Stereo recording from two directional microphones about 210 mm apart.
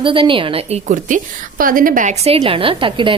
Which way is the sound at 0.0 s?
25° right (ahead or behind).